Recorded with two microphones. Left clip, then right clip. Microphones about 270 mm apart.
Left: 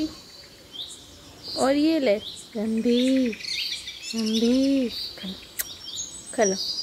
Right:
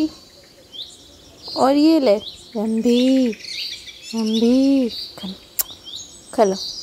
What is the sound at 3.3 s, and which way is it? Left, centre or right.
Bird vocalization, centre.